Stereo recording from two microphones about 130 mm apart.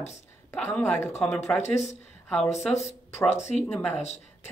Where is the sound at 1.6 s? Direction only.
60° left (ahead or behind).